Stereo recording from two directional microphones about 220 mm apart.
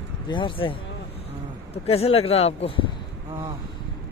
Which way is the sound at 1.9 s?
25° left (ahead or behind).